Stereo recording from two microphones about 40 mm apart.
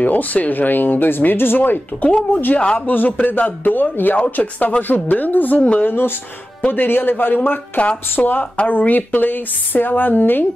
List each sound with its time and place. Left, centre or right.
0.0 s speech: left
2.3 s speech: left
5.9 s speech: left
7.8 s speech: left
8.6 s speech: left